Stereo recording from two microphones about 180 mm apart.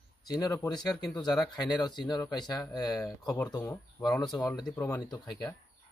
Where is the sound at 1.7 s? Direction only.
25° left (ahead or behind).